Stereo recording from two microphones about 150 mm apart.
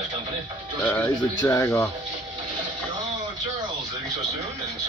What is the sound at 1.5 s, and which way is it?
Speech, 20° left (ahead or behind).